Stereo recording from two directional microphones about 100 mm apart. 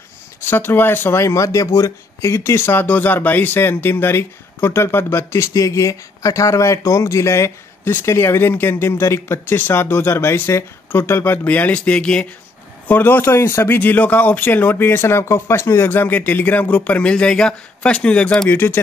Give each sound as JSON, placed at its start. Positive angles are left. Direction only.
{"t": 0.4, "sound": "speech", "side_deg": 20}